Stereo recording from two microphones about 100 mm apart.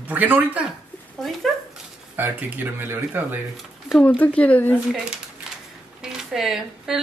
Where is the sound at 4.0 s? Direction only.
15° left (ahead or behind).